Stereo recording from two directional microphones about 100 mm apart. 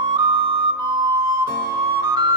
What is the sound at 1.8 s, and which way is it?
Flute, 40° right (ahead or behind).